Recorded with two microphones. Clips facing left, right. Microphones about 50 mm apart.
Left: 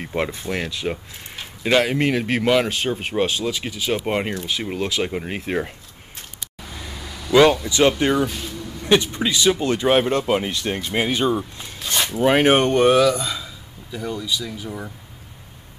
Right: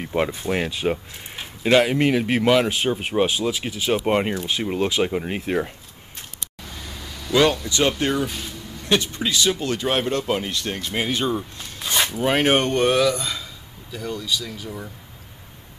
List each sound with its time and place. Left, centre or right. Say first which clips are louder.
0.1 s speech: right 2 dB; centre
4.7 s speech: right 3 dB; centre
5.0 s speech: right 2 dB; centre
6.7 s vehicle: left 3 dB; centre
8.0 s speech: left 3 dB; centre
8.3 s music: left 2 dB; centre
9.2 s speech: left 3 dB; centre
11.8 s a sound: right 1 dB; centre
12.1 s speech: left 4 dB; centre